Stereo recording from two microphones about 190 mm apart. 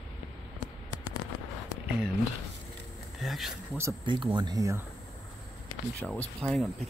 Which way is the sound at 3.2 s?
Centre (ahead or behind).